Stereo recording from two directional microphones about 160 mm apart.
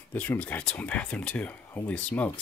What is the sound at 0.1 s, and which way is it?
Speech, 10° left (ahead or behind).